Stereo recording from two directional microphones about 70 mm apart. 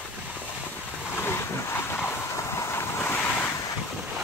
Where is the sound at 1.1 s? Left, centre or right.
Left.